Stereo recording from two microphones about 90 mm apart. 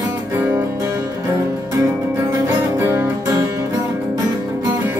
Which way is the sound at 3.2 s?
35° right (ahead or behind).